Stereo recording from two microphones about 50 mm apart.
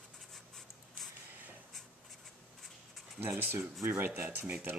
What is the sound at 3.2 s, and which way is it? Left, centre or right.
Speech, right.